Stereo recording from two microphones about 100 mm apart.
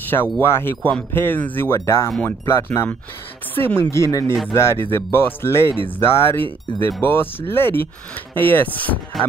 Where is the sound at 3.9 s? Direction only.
30° left (ahead or behind); by 9.0 s 15° left (ahead or behind).